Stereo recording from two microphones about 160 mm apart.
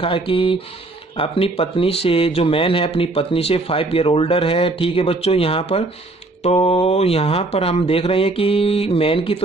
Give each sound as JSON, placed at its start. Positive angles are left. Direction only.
{"t": 0.0, "sound": "speech", "side_deg": 35}